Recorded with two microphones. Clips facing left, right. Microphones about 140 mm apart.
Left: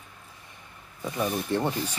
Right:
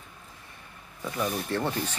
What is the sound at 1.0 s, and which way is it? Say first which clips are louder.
Speech: left 2 dB; 15° left (ahead or behind).